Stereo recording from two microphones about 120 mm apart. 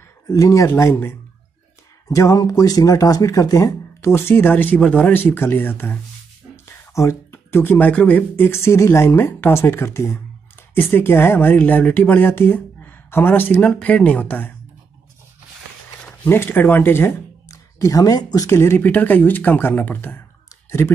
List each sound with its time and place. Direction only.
0.3 s speech: 25° left (ahead or behind)
16.3 s speech: 15° left (ahead or behind)